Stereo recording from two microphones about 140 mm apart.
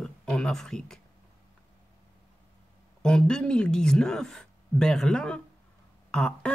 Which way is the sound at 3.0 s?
5° left (ahead or behind).